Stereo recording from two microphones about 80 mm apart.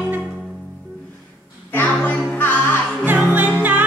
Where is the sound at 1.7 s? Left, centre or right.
Left.